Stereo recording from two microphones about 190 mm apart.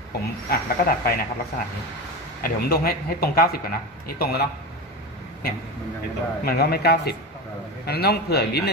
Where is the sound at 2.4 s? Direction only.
55° left (ahead or behind).